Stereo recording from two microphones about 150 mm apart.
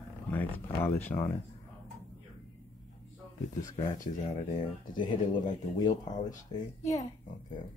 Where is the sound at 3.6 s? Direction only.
25° left (ahead or behind).